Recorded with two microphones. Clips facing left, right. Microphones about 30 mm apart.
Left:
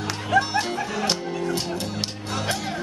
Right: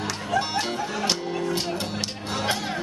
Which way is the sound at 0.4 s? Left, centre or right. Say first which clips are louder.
Left 5 dB; centre.